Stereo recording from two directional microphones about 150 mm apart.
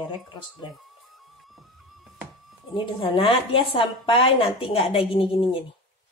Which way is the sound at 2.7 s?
35° left (ahead or behind).